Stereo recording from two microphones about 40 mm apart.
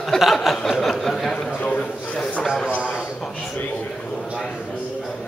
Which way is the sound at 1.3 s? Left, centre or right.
Left.